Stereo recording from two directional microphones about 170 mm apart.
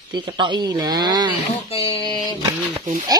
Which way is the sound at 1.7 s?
35° left (ahead or behind).